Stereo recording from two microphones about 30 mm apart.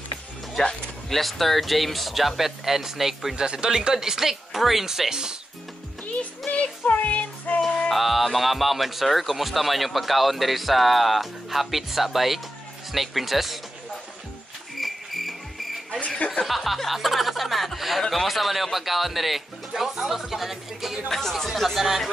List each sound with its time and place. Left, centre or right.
1.1 s speech: centre
3.3 s speech: right
3.7 s speech: centre
6.5 s child singing: left
7.9 s speech: centre
14.8 s music: centre
16.4 s speech: centre
21.1 s speech: centre
21.5 s speech: centre